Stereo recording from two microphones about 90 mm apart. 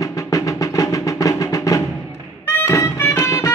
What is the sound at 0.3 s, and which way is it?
Music, 40° left (ahead or behind).